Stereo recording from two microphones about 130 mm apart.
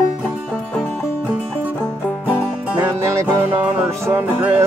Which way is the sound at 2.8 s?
20° right (ahead or behind).